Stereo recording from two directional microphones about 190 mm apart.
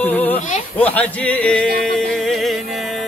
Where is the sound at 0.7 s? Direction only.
10° left (ahead or behind).